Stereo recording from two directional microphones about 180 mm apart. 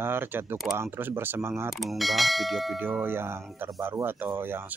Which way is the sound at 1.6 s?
Centre (ahead or behind).